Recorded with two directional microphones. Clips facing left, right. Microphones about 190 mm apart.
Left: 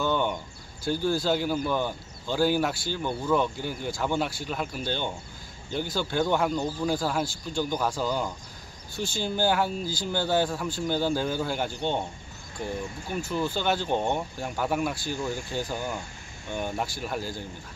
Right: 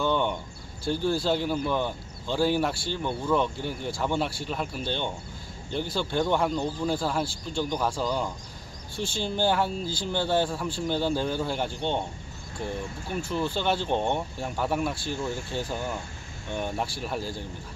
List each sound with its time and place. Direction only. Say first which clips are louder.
0.0 s a sound: right 1 dB; 5° left (ahead or behind)
0.9 s speech: even; centre (ahead or behind)
8.9 s speech: even; 30° right (ahead or behind)
9.2 s speech: even; 5° left (ahead or behind)
13.6 s speech: right 1 dB; centre (ahead or behind)